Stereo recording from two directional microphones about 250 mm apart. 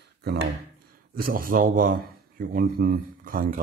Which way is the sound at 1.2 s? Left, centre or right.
Right.